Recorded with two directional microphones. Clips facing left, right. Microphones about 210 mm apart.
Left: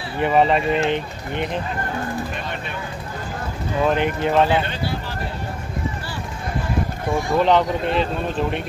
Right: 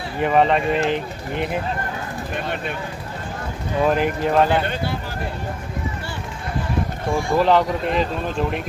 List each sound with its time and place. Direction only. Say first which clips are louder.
0.2 s speech: even; centre (ahead or behind)
3.8 s speech: right 1 dB; centre (ahead or behind)
7.3 s speech: even; centre (ahead or behind)